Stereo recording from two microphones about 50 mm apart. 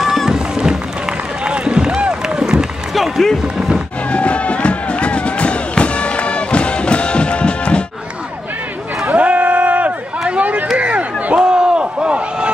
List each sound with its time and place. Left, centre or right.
0.0 s run: centre
1.4 s run: right
2.9 s run: centre
3.5 s music: centre
4.1 s music: left
9.0 s run: right
10.8 s a sound: right
11.3 s a sound: centre